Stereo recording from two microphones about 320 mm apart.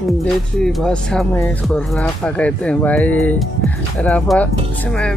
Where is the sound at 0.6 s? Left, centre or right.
Centre.